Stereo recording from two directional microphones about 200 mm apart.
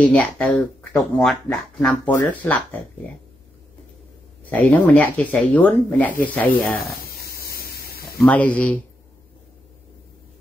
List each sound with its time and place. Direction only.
0.0 s speech: 5° left (ahead or behind)
4.5 s speech: 5° left (ahead or behind)
6.9 s a sound: 50° left (ahead or behind)
8.2 s speech: 5° left (ahead or behind)